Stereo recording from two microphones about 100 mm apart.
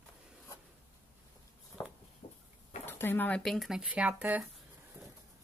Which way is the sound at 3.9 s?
15° right (ahead or behind).